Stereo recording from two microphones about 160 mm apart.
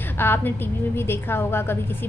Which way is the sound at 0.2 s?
15° left (ahead or behind).